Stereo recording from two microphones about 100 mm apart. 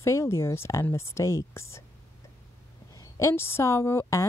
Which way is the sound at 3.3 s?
25° left (ahead or behind).